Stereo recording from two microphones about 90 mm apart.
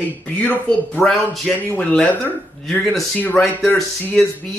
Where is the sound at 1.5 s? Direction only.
5° left (ahead or behind).